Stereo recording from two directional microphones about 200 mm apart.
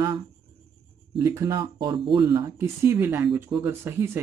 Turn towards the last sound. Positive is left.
turn(degrees=-10)  # may be behind; listen again after turning